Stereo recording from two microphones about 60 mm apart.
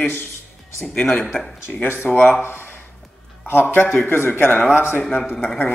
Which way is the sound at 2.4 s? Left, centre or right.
Left.